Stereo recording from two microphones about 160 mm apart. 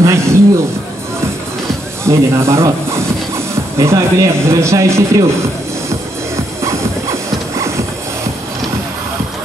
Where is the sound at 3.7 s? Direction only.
15° right (ahead or behind).